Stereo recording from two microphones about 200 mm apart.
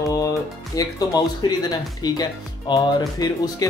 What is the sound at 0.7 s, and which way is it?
Speech, 15° left (ahead or behind).